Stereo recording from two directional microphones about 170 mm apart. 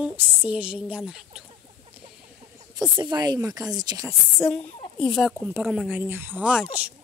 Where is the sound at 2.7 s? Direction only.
25° right (ahead or behind).